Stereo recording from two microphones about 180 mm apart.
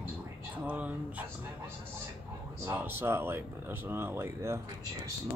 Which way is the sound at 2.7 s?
10° right (ahead or behind).